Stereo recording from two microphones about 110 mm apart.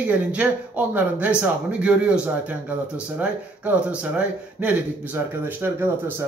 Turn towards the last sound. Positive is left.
turn(degrees=-20)  # may be behind; listen again after turning